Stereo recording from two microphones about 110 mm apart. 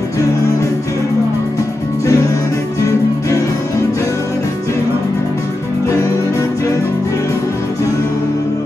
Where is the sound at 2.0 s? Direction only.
30° left (ahead or behind).